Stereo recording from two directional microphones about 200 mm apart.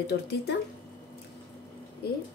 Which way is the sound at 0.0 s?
55° left (ahead or behind).